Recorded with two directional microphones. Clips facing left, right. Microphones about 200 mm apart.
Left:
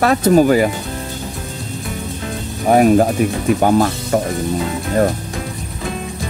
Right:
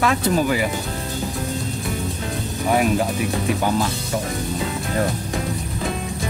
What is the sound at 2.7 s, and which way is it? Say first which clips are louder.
Speech: left 8 dB; 45° left (ahead or behind).